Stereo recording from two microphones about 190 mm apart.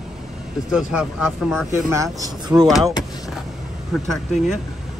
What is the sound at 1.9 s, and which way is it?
Speech, 15° right (ahead or behind).